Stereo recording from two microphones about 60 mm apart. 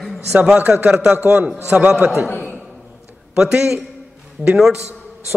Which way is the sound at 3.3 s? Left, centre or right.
Centre.